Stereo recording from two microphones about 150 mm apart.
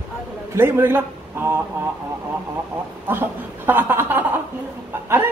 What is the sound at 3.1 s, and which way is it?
A man's voice, 15° right (ahead or behind).